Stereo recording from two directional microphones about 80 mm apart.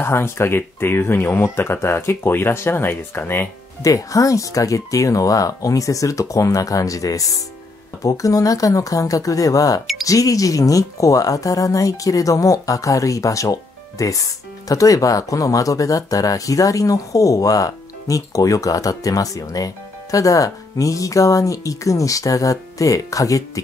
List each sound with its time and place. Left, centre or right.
0.0 s speech: left
3.8 s speech: left